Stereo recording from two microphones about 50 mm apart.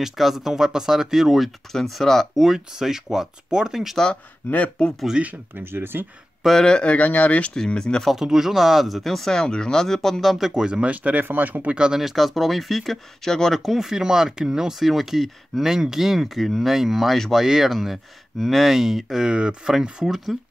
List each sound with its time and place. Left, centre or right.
0.0 s speech: centre
2.4 s speech: centre
4.5 s speech: left
5.2 s speech: centre
5.6 s speech: right
6.6 s speech: centre
7.5 s speech: centre
8.1 s speech: centre
10.2 s speech: centre
10.5 s speech: centre; by 11.7 s right
11.7 s speech: centre
13.6 s speech: centre